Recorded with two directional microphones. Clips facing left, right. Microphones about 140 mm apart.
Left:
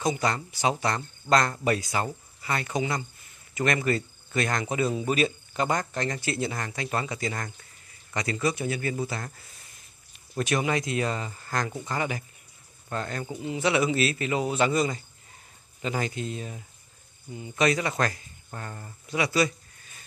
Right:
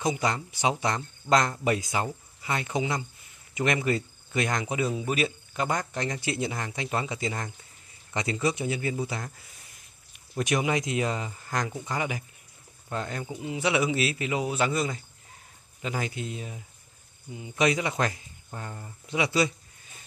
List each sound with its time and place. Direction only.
0.0 s speech: 15° right (ahead or behind)
10.3 s speech: 15° right (ahead or behind)
19.0 s speech: 20° right (ahead or behind)